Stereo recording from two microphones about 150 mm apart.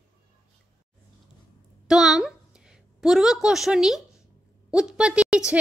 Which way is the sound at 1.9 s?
5° right (ahead or behind).